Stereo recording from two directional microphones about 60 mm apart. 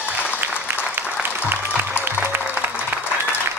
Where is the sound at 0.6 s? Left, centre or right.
Right.